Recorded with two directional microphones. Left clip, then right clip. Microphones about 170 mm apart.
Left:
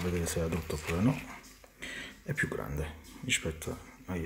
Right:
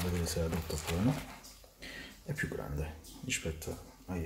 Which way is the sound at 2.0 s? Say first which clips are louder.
Left 5 dB; 15° left (ahead or behind).